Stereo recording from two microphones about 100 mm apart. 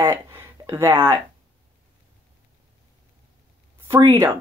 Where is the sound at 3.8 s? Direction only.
30° right (ahead or behind).